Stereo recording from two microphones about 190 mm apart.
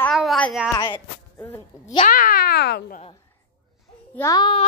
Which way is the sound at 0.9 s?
10° left (ahead or behind).